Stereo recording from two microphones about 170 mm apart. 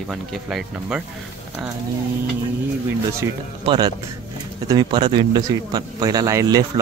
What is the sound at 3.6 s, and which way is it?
A man's voice, 30° right (ahead or behind).